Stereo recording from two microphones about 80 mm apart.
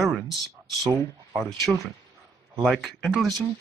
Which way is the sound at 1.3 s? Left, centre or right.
Centre.